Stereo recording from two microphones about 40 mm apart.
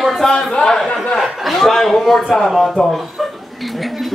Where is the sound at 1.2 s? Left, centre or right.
Centre.